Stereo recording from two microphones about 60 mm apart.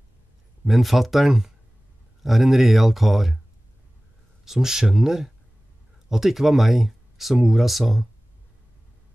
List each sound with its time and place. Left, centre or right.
0.7 s speech: centre
4.5 s speech: centre